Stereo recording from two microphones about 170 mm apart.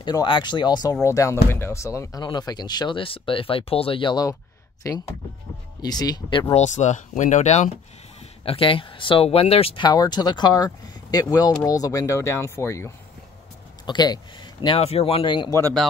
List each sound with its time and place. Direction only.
0.0 s speech: 25° left (ahead or behind)
6.5 s speech: 45° left (ahead or behind); by 15.6 s 30° left (ahead or behind)